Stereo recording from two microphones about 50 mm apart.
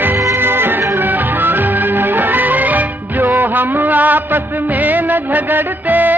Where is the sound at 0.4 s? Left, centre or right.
Right.